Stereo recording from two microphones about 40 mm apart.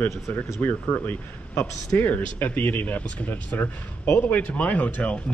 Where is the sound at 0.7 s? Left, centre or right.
Left.